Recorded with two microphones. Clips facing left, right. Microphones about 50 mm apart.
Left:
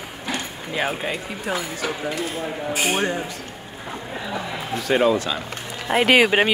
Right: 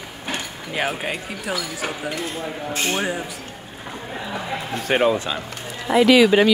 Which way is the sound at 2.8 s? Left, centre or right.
Centre.